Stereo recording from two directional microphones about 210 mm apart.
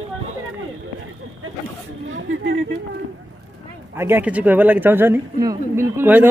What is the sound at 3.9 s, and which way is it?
Speech, 10° right (ahead or behind).